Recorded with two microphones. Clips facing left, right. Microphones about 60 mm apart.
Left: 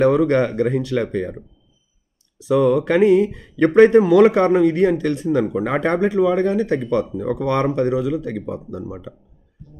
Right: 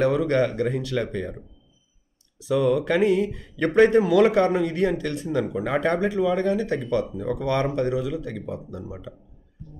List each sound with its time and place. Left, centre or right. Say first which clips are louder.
0.0 s speech: left 5 dB; left
2.6 s speech: left 5 dB; left